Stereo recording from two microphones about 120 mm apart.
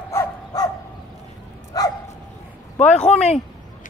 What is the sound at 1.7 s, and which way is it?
Dog, 30° left (ahead or behind).